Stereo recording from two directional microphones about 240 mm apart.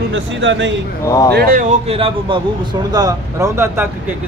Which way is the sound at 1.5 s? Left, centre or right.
Right.